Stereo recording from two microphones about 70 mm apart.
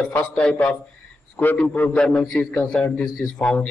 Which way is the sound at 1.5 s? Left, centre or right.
Left.